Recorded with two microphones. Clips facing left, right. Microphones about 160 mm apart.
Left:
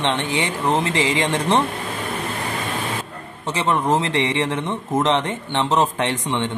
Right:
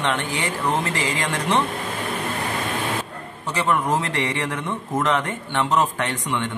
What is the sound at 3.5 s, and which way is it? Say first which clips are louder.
Speech: left 2 dB; 25° left (ahead or behind).